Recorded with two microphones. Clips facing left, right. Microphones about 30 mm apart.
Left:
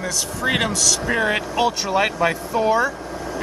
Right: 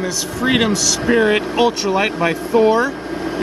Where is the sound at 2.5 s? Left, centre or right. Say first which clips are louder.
Right 9 dB; right.